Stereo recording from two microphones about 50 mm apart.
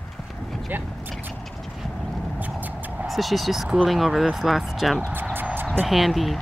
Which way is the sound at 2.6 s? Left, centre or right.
Right.